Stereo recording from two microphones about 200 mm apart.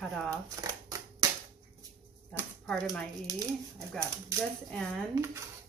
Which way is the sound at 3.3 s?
15° right (ahead or behind).